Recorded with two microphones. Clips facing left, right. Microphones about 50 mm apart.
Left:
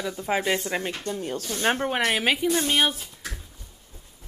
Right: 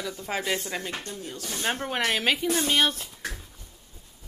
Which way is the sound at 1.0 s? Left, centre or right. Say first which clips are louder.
Left 7 dB; left.